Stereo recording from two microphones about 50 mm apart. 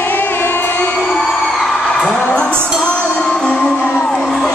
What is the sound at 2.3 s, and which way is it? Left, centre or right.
Music, centre.